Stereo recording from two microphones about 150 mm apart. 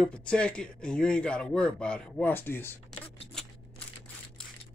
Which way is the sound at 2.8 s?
5° left (ahead or behind).